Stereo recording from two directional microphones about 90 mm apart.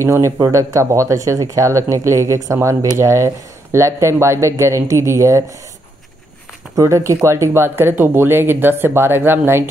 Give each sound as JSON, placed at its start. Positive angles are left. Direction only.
{"t": 0.0, "sound": "speech", "side_deg": -35}
{"t": 6.7, "sound": "speech", "side_deg": -35}